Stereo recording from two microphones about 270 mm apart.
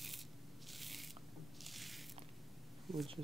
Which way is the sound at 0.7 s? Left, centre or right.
Centre.